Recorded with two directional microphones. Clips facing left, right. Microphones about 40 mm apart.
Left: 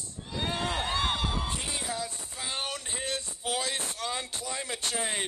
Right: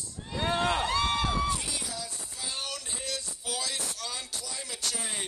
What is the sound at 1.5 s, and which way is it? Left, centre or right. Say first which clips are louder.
Music: right 1 dB; left.